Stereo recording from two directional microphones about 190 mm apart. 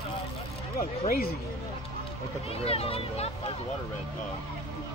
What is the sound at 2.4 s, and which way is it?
Speech, 30° left (ahead or behind).